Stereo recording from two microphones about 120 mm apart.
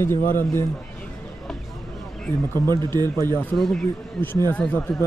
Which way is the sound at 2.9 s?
35° right (ahead or behind).